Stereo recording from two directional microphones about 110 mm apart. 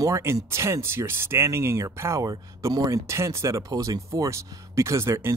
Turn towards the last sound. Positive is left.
turn(degrees=-25)  # may be behind; listen again after turning